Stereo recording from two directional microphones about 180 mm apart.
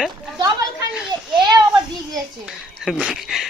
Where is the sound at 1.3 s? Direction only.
25° right (ahead or behind).